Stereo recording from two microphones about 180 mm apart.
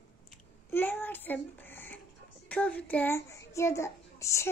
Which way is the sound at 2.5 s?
5° left (ahead or behind).